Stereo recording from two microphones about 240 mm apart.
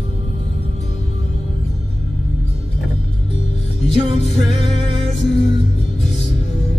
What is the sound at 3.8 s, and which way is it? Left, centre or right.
Music, left.